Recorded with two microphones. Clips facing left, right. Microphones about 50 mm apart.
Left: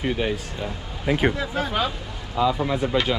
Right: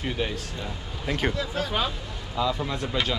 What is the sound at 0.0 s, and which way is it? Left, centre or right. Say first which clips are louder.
A man's voice: left 5 dB; centre.